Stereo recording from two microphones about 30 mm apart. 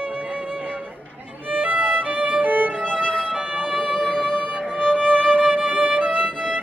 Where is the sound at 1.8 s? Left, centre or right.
Right.